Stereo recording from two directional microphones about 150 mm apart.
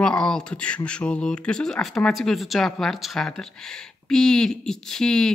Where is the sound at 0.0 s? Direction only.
5° left (ahead or behind).